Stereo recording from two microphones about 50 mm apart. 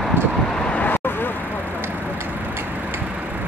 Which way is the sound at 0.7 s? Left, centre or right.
Left.